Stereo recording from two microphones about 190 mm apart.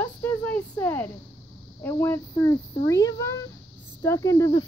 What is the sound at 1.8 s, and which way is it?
Speech, 15° left (ahead or behind).